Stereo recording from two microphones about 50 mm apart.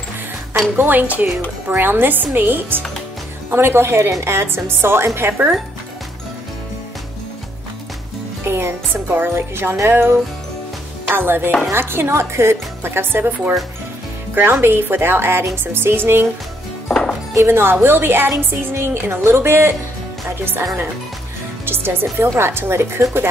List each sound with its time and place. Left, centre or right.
0.7 s speech: right
1.2 s a woman's voice: right
3.5 s a woman's voice: right
8.5 s a woman's voice: right
14.3 s a woman's voice: right
17.5 s a woman's voice: right